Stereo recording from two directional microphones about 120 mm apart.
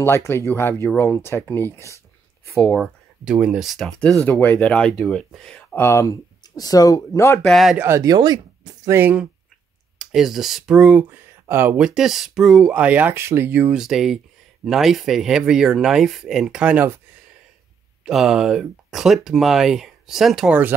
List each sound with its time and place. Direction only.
0.0 s speech: 20° left (ahead or behind)
2.7 s speech: 5° right (ahead or behind)
4.3 s speech: 15° left (ahead or behind)
5.8 s speech: 25° left (ahead or behind)
7.4 s speech: centre (ahead or behind)
7.7 s speech: 20° right (ahead or behind)
8.0 s speech: 35° right (ahead or behind)
8.9 s speech: 15° right (ahead or behind)
9.9 s speech: 5° right (ahead or behind); by 11.8 s 20° right (ahead or behind)
11.8 s speech: 5° right (ahead or behind)
13.7 s speech: 5° right (ahead or behind)
18.0 s speech: centre (ahead or behind)